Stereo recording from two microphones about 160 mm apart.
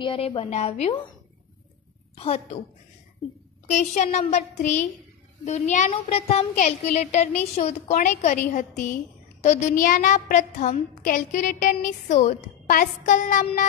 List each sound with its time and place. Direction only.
0.0 s a woman's voice: 30° left (ahead or behind)
2.1 s a woman's voice: 40° left (ahead or behind)
3.7 s a woman's voice: 45° left (ahead or behind)